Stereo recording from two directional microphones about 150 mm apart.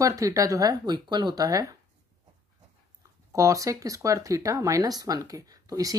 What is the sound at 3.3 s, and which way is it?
Speech, 20° right (ahead or behind).